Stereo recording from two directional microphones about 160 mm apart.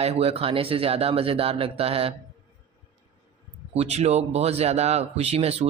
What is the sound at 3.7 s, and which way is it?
A man's voice, 40° right (ahead or behind).